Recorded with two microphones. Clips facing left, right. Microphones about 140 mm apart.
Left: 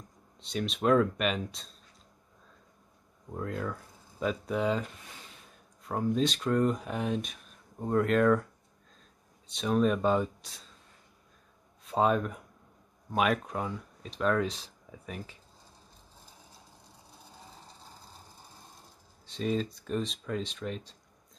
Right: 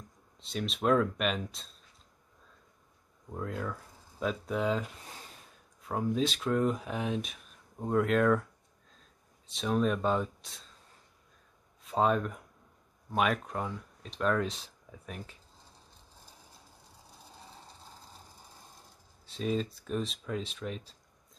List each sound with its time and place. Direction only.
0.4 s speech: centre (ahead or behind)
3.3 s speech: centre (ahead or behind)
9.5 s speech: centre (ahead or behind)
11.8 s speech: centre (ahead or behind)
19.2 s speech: centre (ahead or behind)